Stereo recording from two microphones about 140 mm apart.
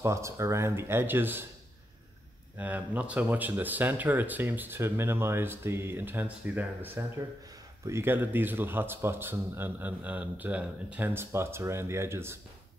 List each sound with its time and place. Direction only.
0.0 s speech: 20° right (ahead or behind)
2.5 s speech: 10° right (ahead or behind)